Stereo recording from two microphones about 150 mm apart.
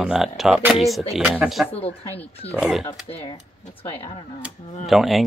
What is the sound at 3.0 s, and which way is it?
Speech, 40° left (ahead or behind).